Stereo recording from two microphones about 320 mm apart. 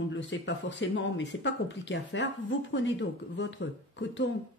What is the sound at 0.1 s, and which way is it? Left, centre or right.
Speech, left.